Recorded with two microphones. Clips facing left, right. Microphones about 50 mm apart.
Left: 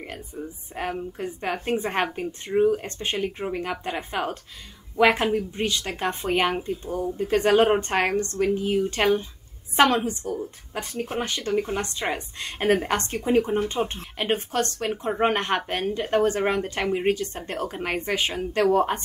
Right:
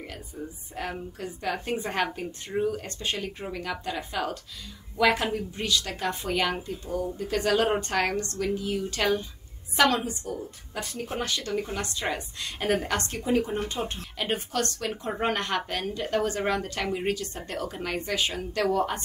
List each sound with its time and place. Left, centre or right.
0.8 s a woman's voice: left